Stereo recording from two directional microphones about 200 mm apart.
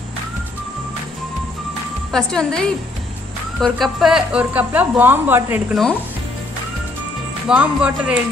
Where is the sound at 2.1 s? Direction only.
5° left (ahead or behind).